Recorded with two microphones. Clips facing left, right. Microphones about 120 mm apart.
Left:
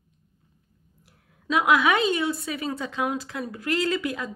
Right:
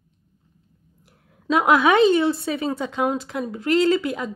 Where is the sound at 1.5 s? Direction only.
30° right (ahead or behind).